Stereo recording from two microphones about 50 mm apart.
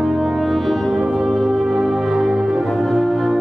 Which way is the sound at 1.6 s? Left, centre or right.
Centre.